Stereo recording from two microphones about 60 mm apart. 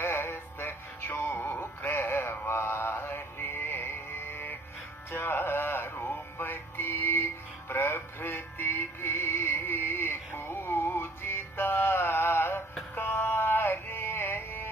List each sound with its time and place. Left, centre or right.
0.0 s synthetic singing: left
1.8 s mantra: left
5.1 s music: left